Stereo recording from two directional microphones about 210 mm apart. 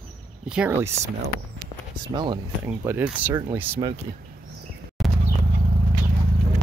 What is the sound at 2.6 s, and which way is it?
Speech, 10° right (ahead or behind).